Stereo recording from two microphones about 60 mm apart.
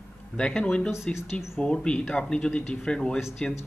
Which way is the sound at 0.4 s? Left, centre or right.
Centre.